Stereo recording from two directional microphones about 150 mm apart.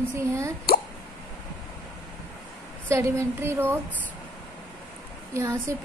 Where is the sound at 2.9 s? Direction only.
20° right (ahead or behind).